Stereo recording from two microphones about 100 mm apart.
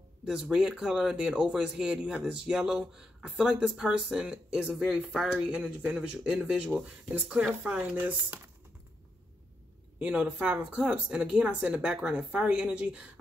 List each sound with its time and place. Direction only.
0.2 s speech: 10° right (ahead or behind)
9.9 s speech: 15° right (ahead or behind)